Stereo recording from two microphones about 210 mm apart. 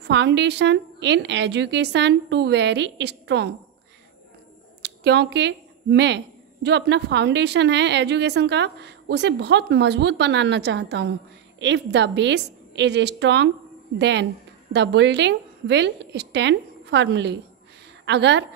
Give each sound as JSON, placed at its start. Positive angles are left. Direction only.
{"t": 0.0, "sound": "a woman's voice", "side_deg": -55}
{"t": 4.8, "sound": "a woman's voice", "side_deg": -55}